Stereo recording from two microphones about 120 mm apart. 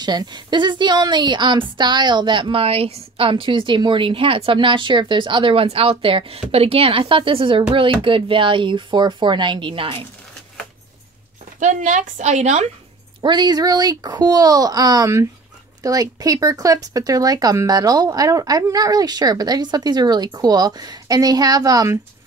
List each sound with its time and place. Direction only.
0.0 s a woman's voice: 35° right (ahead or behind)
11.6 s a woman's voice: 90° right; by 12.6 s 70° right (ahead or behind)
13.2 s speech: 40° right (ahead or behind)